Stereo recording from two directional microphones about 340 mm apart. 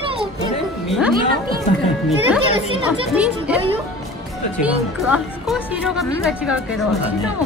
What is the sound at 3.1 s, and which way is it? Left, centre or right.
Speech, centre.